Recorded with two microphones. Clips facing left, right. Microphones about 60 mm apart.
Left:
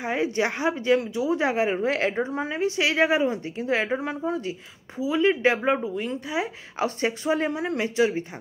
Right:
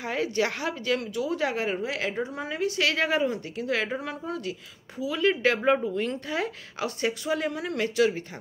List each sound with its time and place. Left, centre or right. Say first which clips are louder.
0.0 s a woman's voice: left 2 dB; left
1.8 s a woman's voice: left 5 dB; left
5.6 s speech: right 1 dB; centre
6.8 s a woman's voice: left 3 dB; left